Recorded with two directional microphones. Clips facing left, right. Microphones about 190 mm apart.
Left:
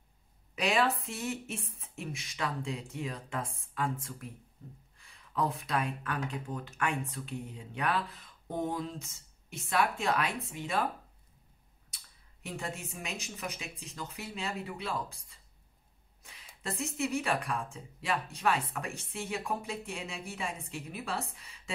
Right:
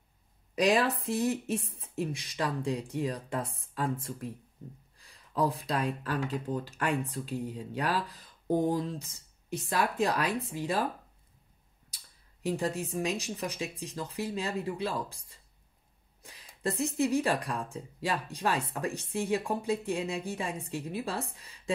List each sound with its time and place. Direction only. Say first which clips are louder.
0.6 s speech: right 3 dB; 35° right (ahead or behind)
12.4 s speech: right 8 dB; 35° right (ahead or behind)